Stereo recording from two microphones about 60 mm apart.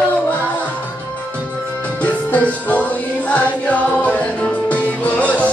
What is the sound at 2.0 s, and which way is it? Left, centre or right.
Music, left.